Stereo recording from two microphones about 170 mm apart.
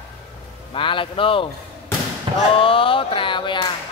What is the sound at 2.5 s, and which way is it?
Speech, 30° left (ahead or behind).